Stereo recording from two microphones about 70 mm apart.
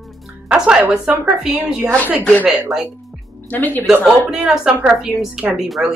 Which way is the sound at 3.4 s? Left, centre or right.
Left.